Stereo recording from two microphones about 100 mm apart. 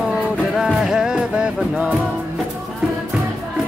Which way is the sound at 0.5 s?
5° right (ahead or behind).